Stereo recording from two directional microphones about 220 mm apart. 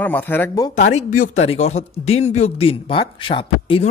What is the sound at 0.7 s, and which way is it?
Speech, 30° left (ahead or behind).